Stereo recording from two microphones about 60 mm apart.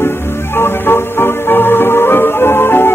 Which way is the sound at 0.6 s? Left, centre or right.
Left.